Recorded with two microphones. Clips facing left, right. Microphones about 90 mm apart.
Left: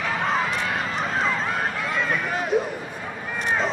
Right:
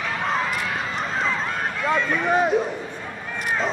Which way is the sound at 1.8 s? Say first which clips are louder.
Right 3 dB; centre (ahead or behind).